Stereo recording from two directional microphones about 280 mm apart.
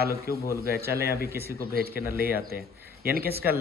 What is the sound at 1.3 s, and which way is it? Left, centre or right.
Speech, centre.